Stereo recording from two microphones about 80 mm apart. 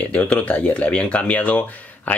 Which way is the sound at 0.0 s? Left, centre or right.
Centre.